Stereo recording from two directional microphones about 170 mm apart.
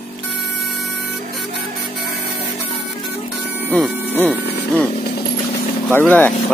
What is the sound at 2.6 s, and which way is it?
Music, centre (ahead or behind).